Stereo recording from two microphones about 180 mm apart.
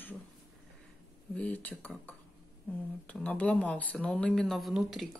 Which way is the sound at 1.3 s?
10° left (ahead or behind).